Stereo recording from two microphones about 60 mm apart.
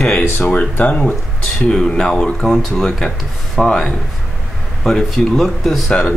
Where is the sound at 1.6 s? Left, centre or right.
Centre.